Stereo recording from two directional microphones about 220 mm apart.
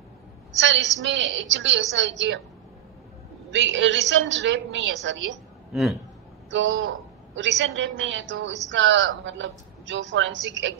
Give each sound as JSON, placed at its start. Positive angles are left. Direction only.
{"t": 0.6, "sound": "speech", "side_deg": -55}
{"t": 3.5, "sound": "speech", "side_deg": -55}
{"t": 5.7, "sound": "a man's voice", "side_deg": 0}
{"t": 6.5, "sound": "speech", "side_deg": -55}